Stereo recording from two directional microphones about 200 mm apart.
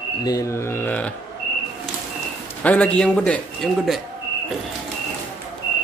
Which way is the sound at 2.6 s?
5° left (ahead or behind).